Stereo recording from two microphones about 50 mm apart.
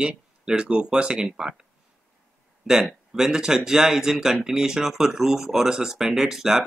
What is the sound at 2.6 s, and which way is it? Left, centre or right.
Speech, centre.